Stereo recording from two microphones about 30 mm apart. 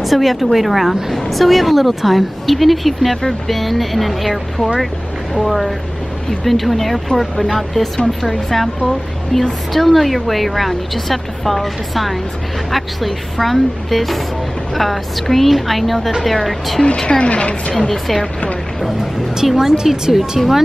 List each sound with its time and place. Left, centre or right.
0.0 s a woman's voice: centre
6.4 s a woman's voice: centre
16.8 s a woman's voice: left
17.3 s a woman's voice: left
17.9 s speech: centre
19.4 s speech: centre